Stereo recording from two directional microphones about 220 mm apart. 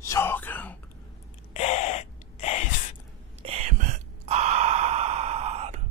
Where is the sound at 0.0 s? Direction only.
10° left (ahead or behind).